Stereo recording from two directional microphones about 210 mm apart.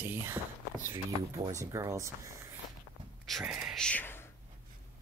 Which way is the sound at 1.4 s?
15° right (ahead or behind).